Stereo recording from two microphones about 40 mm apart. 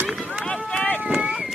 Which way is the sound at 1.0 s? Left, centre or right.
Right.